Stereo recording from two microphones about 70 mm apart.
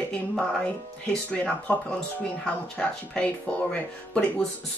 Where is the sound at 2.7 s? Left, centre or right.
Centre.